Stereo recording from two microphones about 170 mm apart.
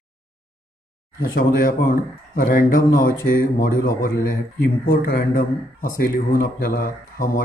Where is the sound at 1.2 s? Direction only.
55° left (ahead or behind).